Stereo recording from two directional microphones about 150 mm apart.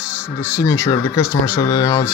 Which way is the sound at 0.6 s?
20° left (ahead or behind).